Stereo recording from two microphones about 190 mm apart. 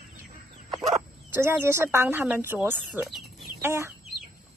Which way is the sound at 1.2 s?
10° right (ahead or behind).